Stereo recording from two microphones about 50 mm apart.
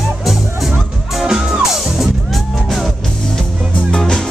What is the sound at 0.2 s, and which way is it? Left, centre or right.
Music, centre.